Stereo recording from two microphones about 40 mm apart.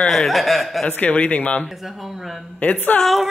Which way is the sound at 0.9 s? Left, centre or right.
Left.